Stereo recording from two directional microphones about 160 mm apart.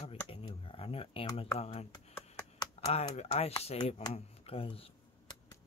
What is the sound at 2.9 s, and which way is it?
Speech, 40° left (ahead or behind).